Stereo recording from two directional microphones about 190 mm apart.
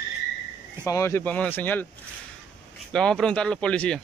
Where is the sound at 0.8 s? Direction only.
15° left (ahead or behind).